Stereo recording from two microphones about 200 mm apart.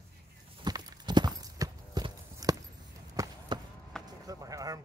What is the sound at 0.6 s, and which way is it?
Clip-clop, 20° right (ahead or behind).